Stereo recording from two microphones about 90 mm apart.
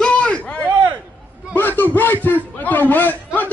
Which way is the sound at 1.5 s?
20° left (ahead or behind).